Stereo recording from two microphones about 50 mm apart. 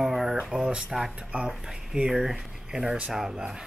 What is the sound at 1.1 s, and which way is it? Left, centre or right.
Speech, centre.